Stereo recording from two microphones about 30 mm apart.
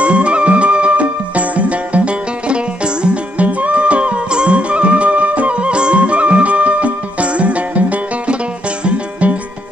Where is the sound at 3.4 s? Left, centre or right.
Right.